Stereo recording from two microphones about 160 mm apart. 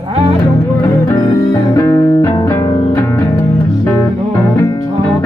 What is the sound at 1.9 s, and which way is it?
Music, 20° left (ahead or behind).